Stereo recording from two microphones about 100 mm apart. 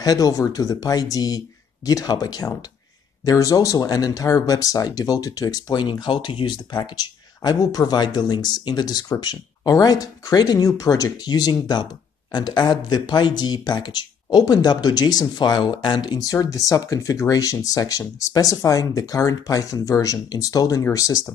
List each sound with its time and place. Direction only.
0.0 s speech: 40° left (ahead or behind)